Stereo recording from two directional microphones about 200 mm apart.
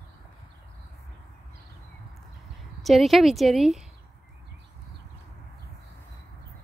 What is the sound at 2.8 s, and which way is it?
Speech, centre (ahead or behind).